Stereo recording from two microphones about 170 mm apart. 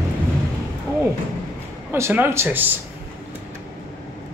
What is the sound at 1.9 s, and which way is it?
Speech, 10° right (ahead or behind).